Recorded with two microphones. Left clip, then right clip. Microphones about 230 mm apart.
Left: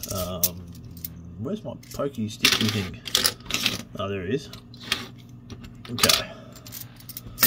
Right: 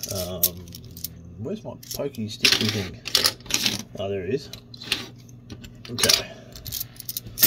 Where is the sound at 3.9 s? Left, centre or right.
Centre.